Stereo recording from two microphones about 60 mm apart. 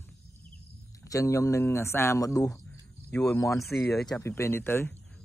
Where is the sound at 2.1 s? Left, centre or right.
Left.